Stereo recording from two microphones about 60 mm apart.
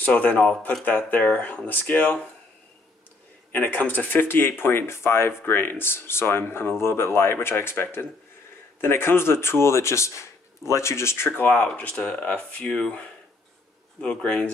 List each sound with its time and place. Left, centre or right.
0.0 s speech: left
3.5 s speech: left
11.4 s speech: left
14.0 s speech: centre